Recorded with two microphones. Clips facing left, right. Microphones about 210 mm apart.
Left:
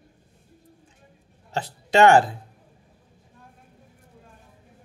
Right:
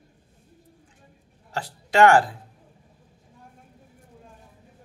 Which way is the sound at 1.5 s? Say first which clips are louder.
Left 3 dB; 25° left (ahead or behind).